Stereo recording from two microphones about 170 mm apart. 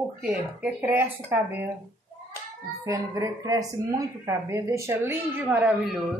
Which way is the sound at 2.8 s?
20° right (ahead or behind).